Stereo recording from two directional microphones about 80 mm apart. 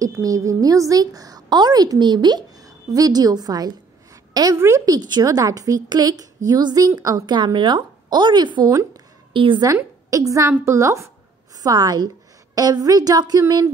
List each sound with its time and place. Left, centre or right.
0.0 s a woman's voice: right
1.5 s a woman's voice: right
4.9 s a woman's voice: right
7.3 s a woman's voice: right
9.3 s a woman's voice: right
10.0 s a woman's voice: right
11.6 s a woman's voice: right